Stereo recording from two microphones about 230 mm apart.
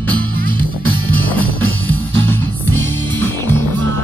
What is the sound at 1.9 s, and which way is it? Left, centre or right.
Music, centre.